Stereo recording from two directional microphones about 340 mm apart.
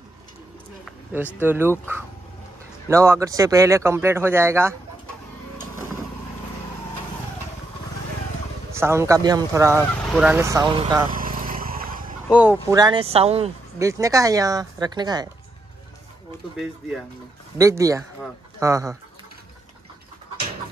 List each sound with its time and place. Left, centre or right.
1.1 s speech: centre
8.7 s speech: centre
11.1 s vehicle: right
12.3 s a sound: centre
12.6 s speech: centre
17.6 s speech: centre